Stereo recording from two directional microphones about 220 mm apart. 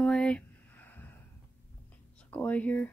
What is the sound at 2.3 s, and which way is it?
Speech, 5° left (ahead or behind).